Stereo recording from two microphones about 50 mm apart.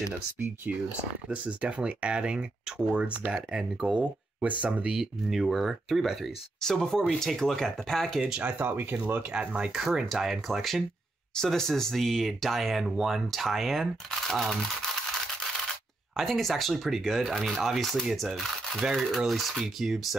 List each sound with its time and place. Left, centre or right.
1.3 s speech: right
4.8 s speech: centre
6.6 s speech: centre
8.4 s speech: right
9.3 s speech: centre
10.1 s speech: centre
11.3 s speech: centre
16.2 s speech: centre